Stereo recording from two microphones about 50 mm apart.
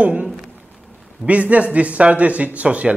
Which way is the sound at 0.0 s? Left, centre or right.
Right.